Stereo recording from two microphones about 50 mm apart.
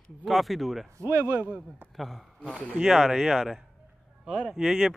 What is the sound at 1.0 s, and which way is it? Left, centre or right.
Speech, right.